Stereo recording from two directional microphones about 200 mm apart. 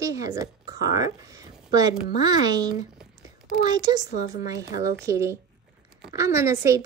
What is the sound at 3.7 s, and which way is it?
A child's voice, 20° right (ahead or behind).